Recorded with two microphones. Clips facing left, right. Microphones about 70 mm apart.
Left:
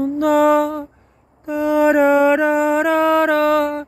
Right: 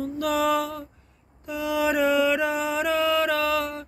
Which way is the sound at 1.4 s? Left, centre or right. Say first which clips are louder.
Left 10 dB; left.